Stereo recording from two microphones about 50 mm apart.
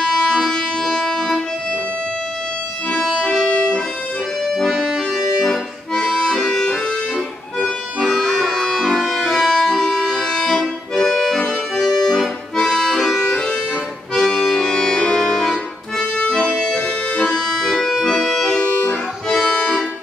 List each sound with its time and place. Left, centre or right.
0.0 s music: centre
3.3 s music: centre
4.5 s accordion: centre
7.6 s music: centre
11.7 s accordion: centre
17.6 s accordion: centre
19.3 s music: centre